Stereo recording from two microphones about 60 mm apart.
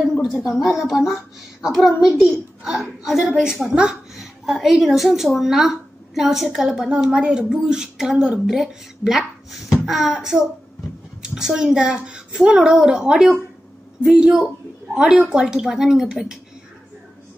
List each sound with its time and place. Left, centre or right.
0.2 s a woman's voice: centre